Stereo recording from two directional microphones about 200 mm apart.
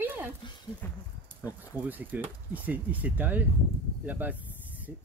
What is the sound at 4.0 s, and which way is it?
Snake, 10° right (ahead or behind).